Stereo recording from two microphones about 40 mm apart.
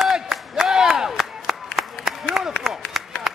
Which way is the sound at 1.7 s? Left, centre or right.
Centre.